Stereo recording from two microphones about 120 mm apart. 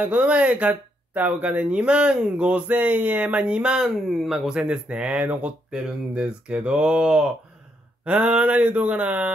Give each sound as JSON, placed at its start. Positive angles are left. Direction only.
{"t": 0.0, "sound": "speech", "side_deg": -10}